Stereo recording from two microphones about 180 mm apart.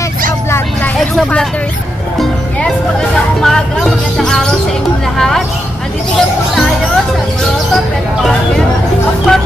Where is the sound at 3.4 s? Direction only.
Centre (ahead or behind).